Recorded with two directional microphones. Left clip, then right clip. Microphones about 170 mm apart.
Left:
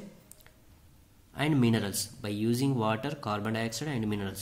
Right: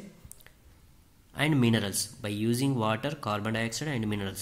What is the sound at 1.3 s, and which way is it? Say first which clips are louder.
Speech: right 1 dB; 15° right (ahead or behind).